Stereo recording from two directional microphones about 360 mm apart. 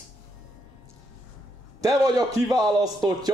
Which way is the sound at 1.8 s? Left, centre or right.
Centre.